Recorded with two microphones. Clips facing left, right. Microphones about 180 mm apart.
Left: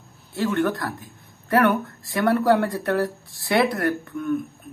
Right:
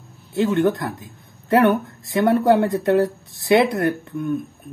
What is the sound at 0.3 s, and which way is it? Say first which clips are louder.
Speech: right 4 dB; 20° right (ahead or behind).